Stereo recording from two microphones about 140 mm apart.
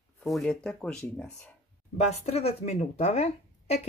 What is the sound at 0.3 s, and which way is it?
Speech, 5° left (ahead or behind).